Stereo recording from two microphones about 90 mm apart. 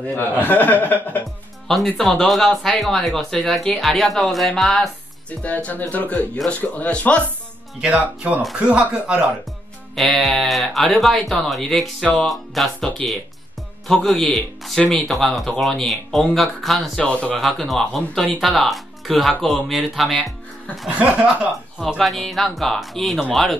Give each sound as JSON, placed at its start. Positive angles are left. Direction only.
{"t": 0.1, "sound": "a man's voice", "side_deg": 20}
{"t": 2.0, "sound": "speech", "side_deg": 5}
{"t": 5.4, "sound": "speech", "side_deg": 15}
{"t": 7.8, "sound": "speech", "side_deg": -15}
{"t": 9.9, "sound": "speech", "side_deg": 0}
{"t": 17.4, "sound": "speech", "side_deg": 0}
{"t": 21.0, "sound": "speech", "side_deg": -10}
{"t": 21.8, "sound": "speech", "side_deg": 5}